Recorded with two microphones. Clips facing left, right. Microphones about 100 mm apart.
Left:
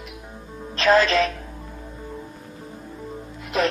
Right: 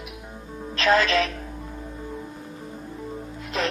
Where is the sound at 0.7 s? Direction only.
35° left (ahead or behind).